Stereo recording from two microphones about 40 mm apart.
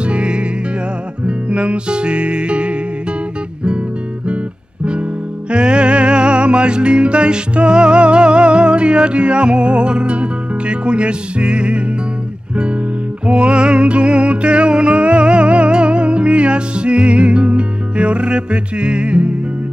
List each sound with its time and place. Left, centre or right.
0.0 s music: right
5.5 s music: right